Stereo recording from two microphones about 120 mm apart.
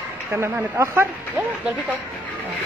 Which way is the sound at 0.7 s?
25° right (ahead or behind).